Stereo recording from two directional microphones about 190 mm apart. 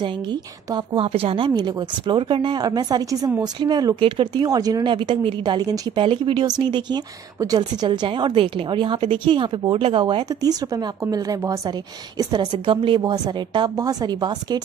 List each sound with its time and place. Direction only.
0.0 s a woman's voice: 25° right (ahead or behind)